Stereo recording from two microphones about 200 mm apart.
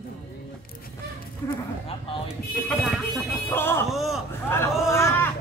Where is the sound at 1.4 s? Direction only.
15° left (ahead or behind).